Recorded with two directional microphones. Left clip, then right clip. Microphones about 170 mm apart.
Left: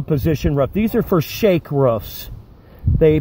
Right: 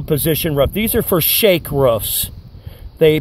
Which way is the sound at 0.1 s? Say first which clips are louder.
Right 2 dB; 40° right (ahead or behind).